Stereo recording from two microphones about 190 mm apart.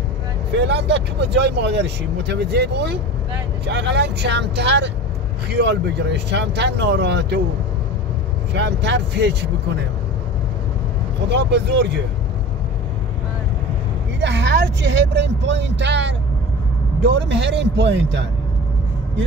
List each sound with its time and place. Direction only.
0.6 s speech: 65° right (ahead or behind)
8.5 s speech: 65° right (ahead or behind)
11.2 s speech: 65° right (ahead or behind)
14.2 s speech: 65° right (ahead or behind)